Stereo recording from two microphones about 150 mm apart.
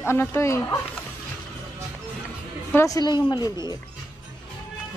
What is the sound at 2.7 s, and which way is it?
Speech, 20° left (ahead or behind).